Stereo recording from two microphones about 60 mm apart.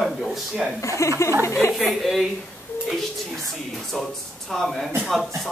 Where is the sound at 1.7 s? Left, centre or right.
Centre.